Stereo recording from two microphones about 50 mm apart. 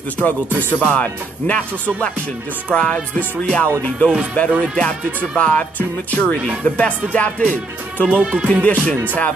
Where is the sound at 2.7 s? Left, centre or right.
Left.